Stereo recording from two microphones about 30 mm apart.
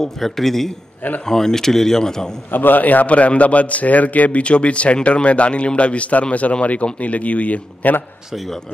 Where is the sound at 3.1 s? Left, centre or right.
Left.